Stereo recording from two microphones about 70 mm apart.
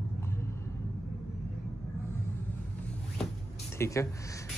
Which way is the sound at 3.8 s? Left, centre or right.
Left.